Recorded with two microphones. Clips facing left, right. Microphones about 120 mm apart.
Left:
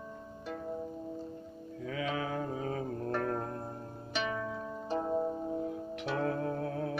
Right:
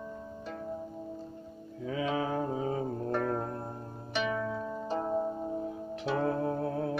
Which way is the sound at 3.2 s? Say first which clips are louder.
Right 2 dB; 15° right (ahead or behind).